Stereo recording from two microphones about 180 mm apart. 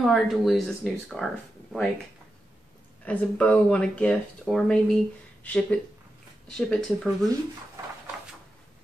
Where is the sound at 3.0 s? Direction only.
5° left (ahead or behind).